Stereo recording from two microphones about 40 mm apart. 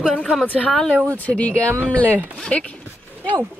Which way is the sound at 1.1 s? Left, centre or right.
Left.